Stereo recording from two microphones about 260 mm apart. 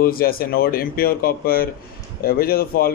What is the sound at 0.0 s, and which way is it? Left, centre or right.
A man's voice, left.